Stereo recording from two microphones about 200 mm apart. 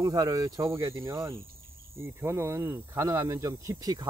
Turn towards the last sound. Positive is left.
turn(degrees=-20)  # may be behind; listen again after turning